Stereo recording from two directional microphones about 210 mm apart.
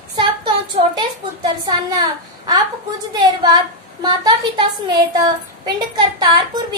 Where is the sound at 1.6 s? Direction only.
20° right (ahead or behind).